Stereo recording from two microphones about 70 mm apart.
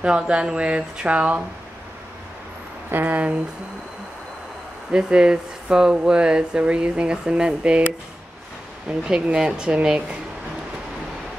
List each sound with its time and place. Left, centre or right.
0.0 s speech: centre
2.9 s speech: right
4.9 s speech: centre